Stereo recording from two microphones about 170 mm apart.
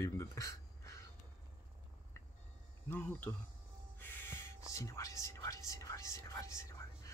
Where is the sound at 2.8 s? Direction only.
10° left (ahead or behind).